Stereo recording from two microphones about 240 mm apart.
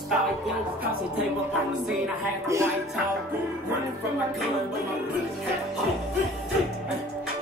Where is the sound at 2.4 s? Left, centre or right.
Centre.